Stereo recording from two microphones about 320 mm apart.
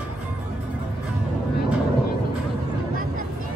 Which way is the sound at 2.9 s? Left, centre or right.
Right.